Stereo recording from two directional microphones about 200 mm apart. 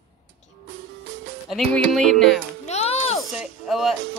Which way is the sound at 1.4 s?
Centre (ahead or behind).